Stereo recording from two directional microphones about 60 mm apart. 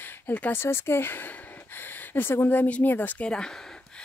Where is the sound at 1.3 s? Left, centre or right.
Left.